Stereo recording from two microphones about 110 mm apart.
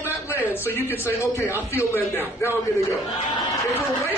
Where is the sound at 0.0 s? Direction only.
20° left (ahead or behind).